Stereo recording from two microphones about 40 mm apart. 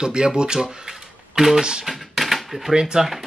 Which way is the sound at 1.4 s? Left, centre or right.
Centre.